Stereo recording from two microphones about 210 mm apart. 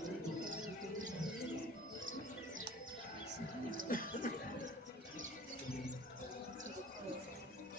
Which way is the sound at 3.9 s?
40° left (ahead or behind).